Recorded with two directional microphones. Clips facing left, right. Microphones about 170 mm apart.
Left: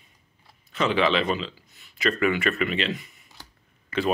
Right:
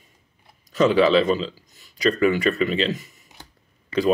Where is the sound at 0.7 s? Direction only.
40° right (ahead or behind).